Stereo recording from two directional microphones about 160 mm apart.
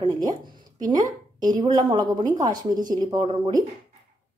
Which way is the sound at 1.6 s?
25° right (ahead or behind).